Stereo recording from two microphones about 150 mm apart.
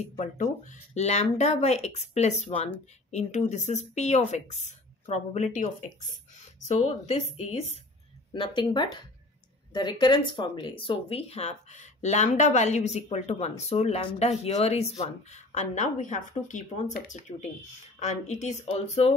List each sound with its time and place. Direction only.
0.2 s speech: 50° left (ahead or behind)
8.3 s speech: 30° left (ahead or behind)